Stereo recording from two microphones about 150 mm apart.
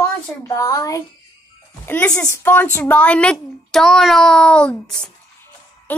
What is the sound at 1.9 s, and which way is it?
A woman's voice, 10° left (ahead or behind).